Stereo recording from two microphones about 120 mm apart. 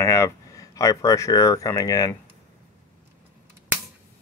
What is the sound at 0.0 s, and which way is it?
Speech, 25° left (ahead or behind).